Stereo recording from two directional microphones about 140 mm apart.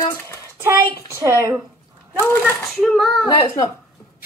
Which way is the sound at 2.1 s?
15° left (ahead or behind).